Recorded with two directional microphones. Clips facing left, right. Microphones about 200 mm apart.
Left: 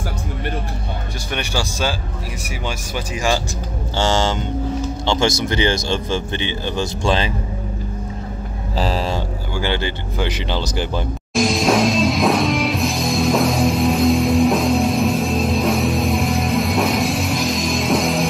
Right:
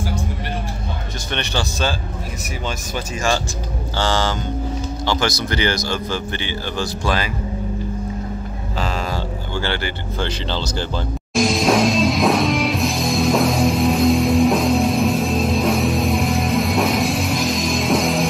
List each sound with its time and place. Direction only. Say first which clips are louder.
1.3 s speech: even; 10° left (ahead or behind)
4.0 s speech: left 2 dB; 20° left (ahead or behind)
8.7 s vehicle: left 4 dB; 35° left (ahead or behind)
9.1 s speech: left 1 dB; 20° left (ahead or behind)
11.3 s music: even; centre (ahead or behind)